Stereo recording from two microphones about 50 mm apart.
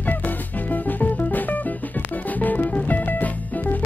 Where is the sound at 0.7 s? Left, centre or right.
Left.